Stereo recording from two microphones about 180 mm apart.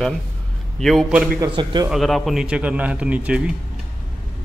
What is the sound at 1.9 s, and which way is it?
A man's voice, centre (ahead or behind).